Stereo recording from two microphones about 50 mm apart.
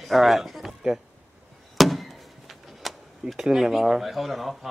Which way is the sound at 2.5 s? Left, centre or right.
Centre.